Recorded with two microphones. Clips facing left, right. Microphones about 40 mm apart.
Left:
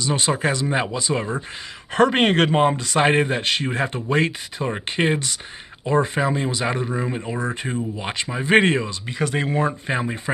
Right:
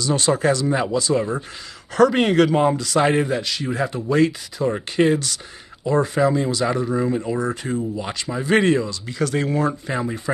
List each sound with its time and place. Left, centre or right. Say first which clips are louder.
0.0 s speech: right 3 dB; left
9.8 s speech: even; left